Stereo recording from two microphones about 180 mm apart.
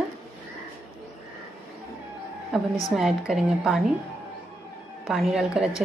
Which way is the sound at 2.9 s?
Centre (ahead or behind).